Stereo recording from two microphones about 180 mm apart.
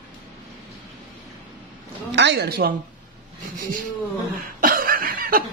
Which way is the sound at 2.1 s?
70° right (ahead or behind).